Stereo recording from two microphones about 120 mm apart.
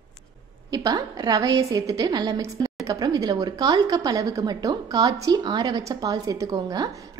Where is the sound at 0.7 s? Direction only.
30° right (ahead or behind).